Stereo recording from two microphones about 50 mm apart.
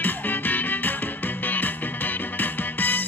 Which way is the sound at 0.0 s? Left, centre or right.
Left.